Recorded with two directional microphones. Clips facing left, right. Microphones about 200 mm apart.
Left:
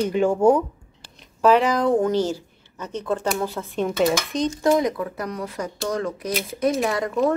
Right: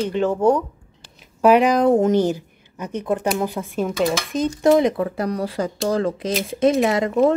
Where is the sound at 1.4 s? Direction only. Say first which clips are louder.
Right 3 dB; 15° right (ahead or behind).